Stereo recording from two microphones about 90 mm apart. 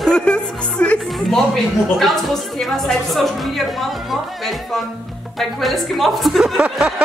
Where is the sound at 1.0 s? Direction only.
Centre (ahead or behind).